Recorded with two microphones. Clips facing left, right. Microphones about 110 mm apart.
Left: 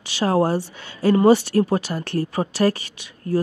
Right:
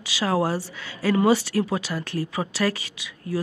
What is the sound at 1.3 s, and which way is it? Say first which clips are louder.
Speech: left 5 dB; 60° left (ahead or behind).